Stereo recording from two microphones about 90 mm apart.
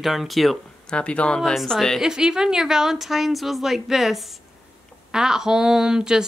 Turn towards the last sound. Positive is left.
turn(degrees=-10)  # may be behind; listen again after turning